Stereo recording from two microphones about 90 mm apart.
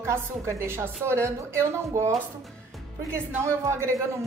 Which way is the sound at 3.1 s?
30° right (ahead or behind).